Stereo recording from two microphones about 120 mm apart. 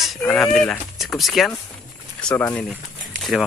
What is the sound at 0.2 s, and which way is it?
Speech, 5° left (ahead or behind).